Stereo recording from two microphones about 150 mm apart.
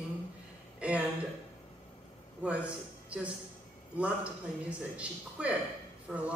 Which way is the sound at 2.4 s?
10° right (ahead or behind).